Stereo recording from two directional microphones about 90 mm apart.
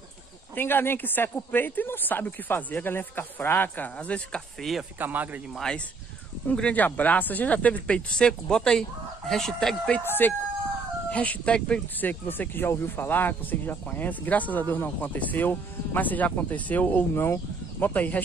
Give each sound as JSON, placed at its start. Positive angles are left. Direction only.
{"t": 0.6, "sound": "speech", "side_deg": 25}
{"t": 4.6, "sound": "speech", "side_deg": 0}
{"t": 4.9, "sound": "a man's voice", "side_deg": -20}
{"t": 5.5, "sound": "speech", "side_deg": 10}
{"t": 10.0, "sound": "speech", "side_deg": 20}